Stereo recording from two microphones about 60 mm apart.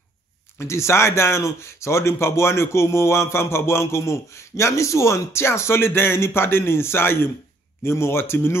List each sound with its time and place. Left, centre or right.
0.6 s speech: left